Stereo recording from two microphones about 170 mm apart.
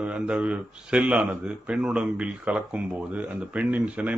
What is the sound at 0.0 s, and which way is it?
Speech, 5° right (ahead or behind).